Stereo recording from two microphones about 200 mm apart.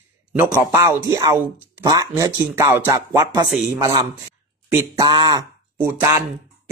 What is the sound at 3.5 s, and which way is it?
Speech, centre (ahead or behind).